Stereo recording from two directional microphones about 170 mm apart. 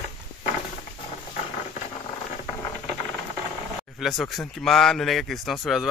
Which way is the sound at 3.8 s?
Centre (ahead or behind).